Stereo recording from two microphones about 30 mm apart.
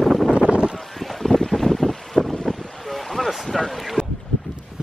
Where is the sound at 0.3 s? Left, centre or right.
Right.